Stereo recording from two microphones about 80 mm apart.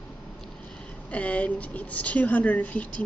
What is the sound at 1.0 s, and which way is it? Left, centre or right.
Speech, centre.